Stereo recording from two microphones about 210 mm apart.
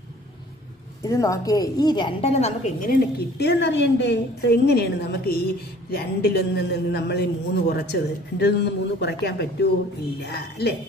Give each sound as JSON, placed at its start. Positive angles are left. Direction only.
{"t": 1.0, "sound": "a woman's voice", "side_deg": 15}